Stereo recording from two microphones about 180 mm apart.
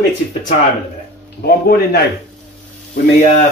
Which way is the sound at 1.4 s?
60° left (ahead or behind).